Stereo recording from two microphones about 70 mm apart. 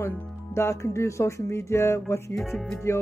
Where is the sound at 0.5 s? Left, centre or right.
Left.